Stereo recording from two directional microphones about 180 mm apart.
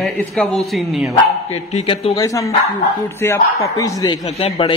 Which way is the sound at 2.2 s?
20° left (ahead or behind).